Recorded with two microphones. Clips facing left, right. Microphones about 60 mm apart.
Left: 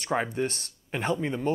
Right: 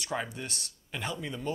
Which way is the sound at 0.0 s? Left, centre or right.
Left.